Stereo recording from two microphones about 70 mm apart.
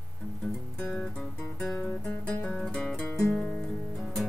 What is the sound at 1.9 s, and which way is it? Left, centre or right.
Music, left.